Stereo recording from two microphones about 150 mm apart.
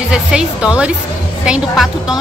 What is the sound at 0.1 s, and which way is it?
A woman's voice, 5° right (ahead or behind).